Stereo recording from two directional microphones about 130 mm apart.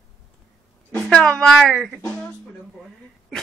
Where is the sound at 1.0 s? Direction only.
5° left (ahead or behind).